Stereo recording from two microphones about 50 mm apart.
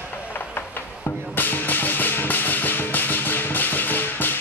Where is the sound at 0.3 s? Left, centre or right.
Left.